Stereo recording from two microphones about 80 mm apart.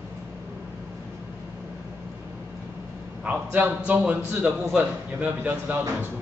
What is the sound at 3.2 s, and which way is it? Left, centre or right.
A man's voice, centre.